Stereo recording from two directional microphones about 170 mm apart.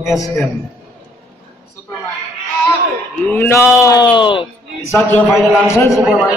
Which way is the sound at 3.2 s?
15° left (ahead or behind).